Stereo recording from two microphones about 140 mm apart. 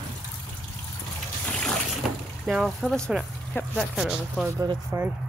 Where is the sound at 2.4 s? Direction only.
Centre (ahead or behind).